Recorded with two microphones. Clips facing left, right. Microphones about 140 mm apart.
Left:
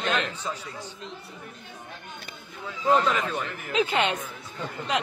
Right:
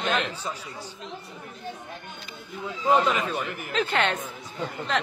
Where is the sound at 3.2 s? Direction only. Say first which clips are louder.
Right 1 dB; 15° right (ahead or behind).